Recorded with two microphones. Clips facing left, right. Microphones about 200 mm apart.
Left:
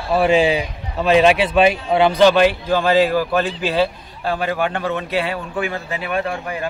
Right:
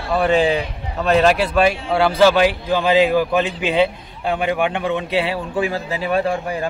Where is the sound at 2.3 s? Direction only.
10° right (ahead or behind); by 6.2 s 30° right (ahead or behind).